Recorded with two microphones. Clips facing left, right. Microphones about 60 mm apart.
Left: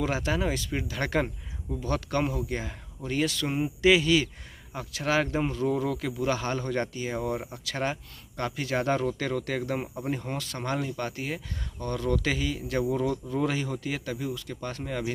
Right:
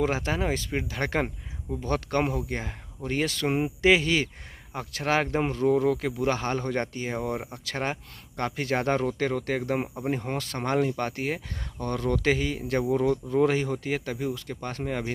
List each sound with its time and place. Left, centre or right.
0.0 s speech: right
10.3 s speech: right